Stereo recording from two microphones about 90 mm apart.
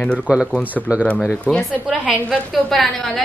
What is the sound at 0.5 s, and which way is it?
Speech, 15° left (ahead or behind).